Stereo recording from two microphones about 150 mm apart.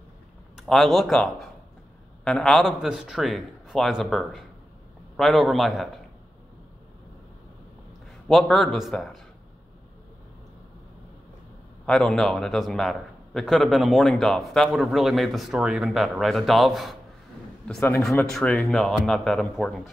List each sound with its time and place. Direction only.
0.6 s speech: centre (ahead or behind)
8.3 s speech: centre (ahead or behind)
11.8 s speech: centre (ahead or behind)
17.7 s a man's voice: 15° left (ahead or behind); by 19.9 s centre (ahead or behind)